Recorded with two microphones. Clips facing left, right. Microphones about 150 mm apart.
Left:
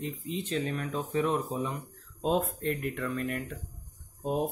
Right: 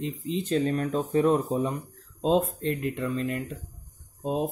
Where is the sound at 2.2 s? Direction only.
25° right (ahead or behind).